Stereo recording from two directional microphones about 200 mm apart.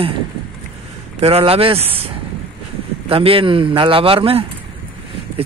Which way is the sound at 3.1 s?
30° right (ahead or behind).